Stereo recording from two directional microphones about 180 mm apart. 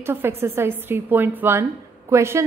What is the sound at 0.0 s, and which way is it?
A woman's voice, 15° right (ahead or behind).